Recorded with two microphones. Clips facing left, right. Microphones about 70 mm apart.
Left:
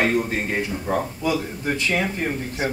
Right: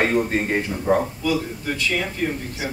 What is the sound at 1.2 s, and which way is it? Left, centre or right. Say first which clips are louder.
Speech: even; left.